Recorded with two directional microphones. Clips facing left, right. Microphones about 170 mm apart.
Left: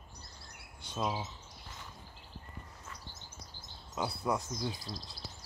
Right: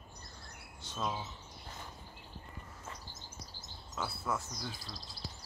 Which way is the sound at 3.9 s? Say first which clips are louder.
Left 4 dB; 15° left (ahead or behind).